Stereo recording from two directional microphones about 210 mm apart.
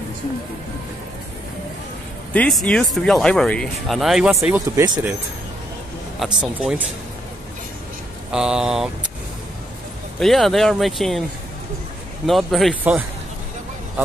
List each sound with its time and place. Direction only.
2.3 s speech: 5° left (ahead or behind); by 5.1 s 15° right (ahead or behind)
6.1 s speech: 5° right (ahead or behind)
8.3 s speech: 5° right (ahead or behind)
10.1 s speech: centre (ahead or behind)
12.3 s speech: centre (ahead or behind)